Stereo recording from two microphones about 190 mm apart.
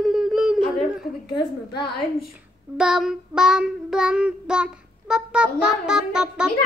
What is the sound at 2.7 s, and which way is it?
Child singing, 5° right (ahead or behind).